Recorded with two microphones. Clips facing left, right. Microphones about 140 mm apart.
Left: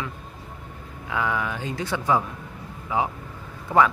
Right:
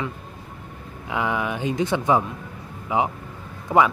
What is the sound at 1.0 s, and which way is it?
Speech, 20° right (ahead or behind).